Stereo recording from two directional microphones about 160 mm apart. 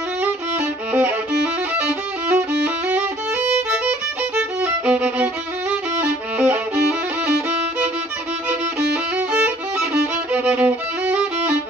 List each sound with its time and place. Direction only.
0.9 s violin: 10° right (ahead or behind)
8.5 s violin: 5° right (ahead or behind)